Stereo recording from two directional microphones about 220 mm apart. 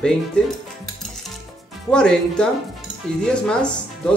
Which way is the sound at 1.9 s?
5° left (ahead or behind).